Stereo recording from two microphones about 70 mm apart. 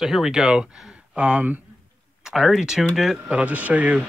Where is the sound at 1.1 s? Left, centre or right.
Right.